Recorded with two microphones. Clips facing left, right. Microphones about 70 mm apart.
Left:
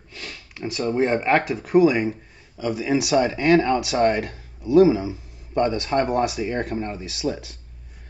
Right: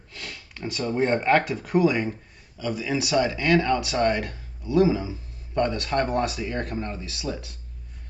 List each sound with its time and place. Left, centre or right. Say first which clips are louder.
0.1 s speech: left 1 dB; centre
2.5 s speech: left 5 dB; left